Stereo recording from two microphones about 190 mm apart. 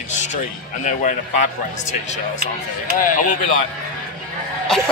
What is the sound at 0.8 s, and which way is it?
Speech, 40° left (ahead or behind).